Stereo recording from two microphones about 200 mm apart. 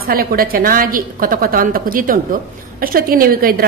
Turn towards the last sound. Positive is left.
turn(degrees=-50)  # may be behind; listen again after turning